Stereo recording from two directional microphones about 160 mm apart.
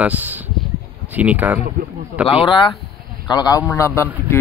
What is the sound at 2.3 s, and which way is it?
A man's voice, 35° left (ahead or behind).